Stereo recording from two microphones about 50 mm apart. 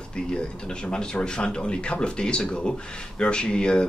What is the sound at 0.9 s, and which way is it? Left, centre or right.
Speech, centre.